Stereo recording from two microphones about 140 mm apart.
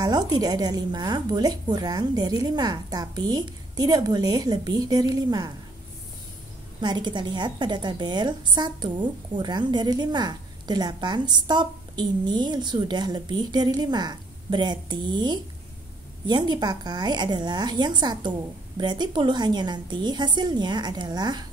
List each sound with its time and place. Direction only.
0.0 s a woman's voice: 30° right (ahead or behind)
6.8 s a woman's voice: 30° right (ahead or behind)